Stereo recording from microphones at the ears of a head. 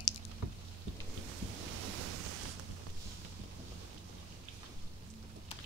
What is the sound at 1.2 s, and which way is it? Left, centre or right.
Ocean, right.